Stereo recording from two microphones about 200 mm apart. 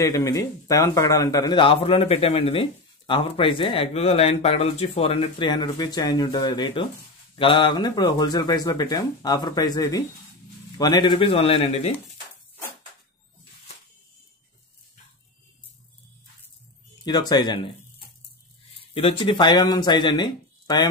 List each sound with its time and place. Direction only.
0.0 s a man's voice: 15° left (ahead or behind)
17.0 s a man's voice: 20° left (ahead or behind)
18.9 s a man's voice: 25° left (ahead or behind)